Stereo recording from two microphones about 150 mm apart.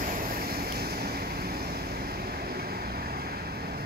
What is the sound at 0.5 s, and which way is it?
Vehicle, 90° right.